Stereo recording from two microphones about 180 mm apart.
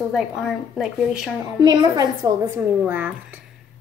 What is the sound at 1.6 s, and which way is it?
Speech, 20° right (ahead or behind).